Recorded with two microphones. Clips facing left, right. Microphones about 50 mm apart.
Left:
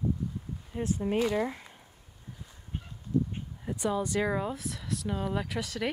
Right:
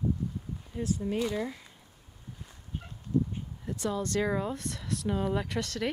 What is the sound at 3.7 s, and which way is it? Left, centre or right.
Speech, centre.